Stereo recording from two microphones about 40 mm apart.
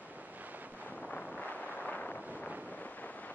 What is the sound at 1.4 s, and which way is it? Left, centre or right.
Wind noise, left.